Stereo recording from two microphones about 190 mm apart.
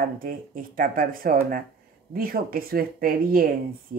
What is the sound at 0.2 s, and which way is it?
Speech, 50° right (ahead or behind).